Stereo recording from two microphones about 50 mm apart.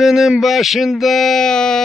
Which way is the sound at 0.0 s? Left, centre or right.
Centre.